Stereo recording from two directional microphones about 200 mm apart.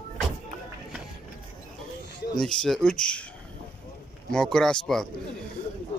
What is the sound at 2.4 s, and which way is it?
Speech, 5° left (ahead or behind).